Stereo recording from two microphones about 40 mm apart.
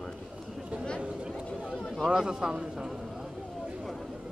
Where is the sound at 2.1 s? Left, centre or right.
Centre.